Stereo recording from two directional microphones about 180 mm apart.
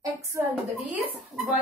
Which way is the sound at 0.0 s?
15° right (ahead or behind).